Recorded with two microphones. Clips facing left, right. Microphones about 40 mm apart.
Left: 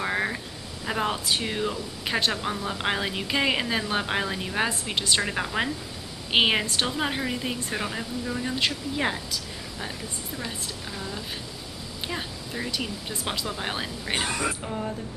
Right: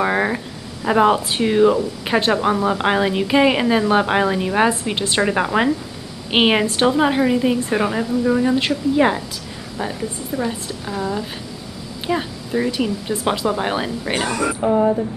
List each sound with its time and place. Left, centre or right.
0.0 s a sound: right
0.8 s a woman's voice: right
6.6 s speech: right
7.0 s a woman's voice: centre
10.3 s a woman's voice: right
12.1 s a woman's voice: centre
14.6 s speech: right